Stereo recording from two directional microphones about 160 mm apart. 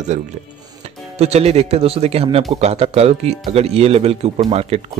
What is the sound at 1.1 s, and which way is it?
Speech, 40° right (ahead or behind).